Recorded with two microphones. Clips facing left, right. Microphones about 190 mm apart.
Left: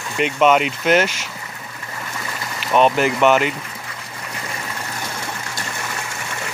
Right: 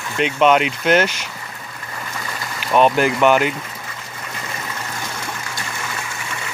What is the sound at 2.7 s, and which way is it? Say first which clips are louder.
Speech: right 1 dB; centre (ahead or behind).